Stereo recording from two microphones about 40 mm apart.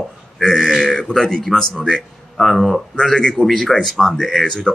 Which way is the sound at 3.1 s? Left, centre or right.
Centre.